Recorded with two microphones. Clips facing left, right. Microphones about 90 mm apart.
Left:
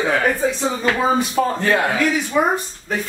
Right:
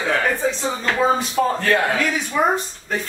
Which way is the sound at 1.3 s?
15° left (ahead or behind).